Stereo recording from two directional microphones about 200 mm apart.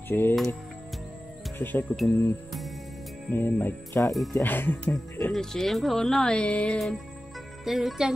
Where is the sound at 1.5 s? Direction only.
10° left (ahead or behind).